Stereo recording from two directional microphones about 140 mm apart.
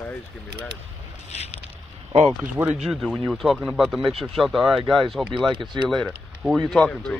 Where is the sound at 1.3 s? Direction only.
50° left (ahead or behind).